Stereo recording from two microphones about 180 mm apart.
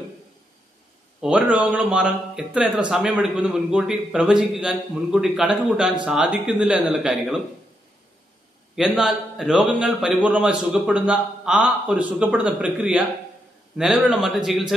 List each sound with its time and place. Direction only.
1.2 s a man's voice: 5° right (ahead or behind)
8.7 s a man's voice: centre (ahead or behind)